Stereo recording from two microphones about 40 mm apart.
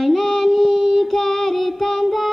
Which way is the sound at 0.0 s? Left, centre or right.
Centre.